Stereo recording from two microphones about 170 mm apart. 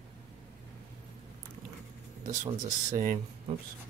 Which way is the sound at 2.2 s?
45° right (ahead or behind).